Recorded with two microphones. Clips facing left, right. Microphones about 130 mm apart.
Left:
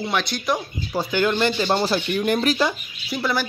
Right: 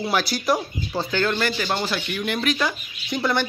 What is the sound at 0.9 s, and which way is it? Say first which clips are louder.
Speech: left 2 dB; 15° left (ahead or behind).